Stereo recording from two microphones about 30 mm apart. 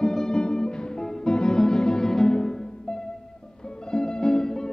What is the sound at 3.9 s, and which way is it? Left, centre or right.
Music, left.